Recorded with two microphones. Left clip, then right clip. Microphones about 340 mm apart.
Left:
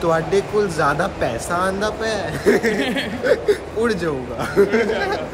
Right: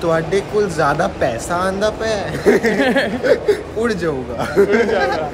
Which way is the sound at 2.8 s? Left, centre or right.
Centre.